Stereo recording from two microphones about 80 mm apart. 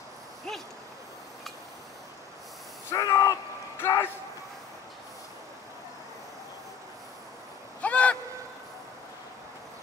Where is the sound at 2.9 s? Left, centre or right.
Left.